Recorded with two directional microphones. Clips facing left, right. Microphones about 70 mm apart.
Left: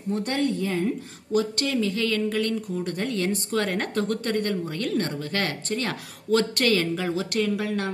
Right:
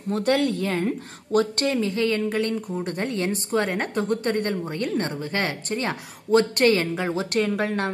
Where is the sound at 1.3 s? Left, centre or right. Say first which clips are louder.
Right 2 dB; right.